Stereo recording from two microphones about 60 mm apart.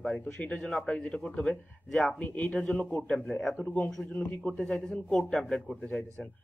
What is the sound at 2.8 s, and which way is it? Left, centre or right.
Speech, centre.